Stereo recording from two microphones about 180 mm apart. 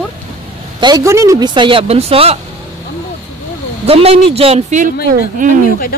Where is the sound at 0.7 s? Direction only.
25° right (ahead or behind).